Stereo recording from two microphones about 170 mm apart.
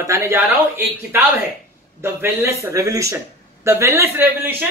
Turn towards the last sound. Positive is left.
turn(degrees=-10)  # may be behind; listen again after turning